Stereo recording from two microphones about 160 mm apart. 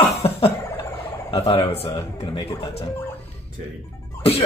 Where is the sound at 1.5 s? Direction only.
35° left (ahead or behind).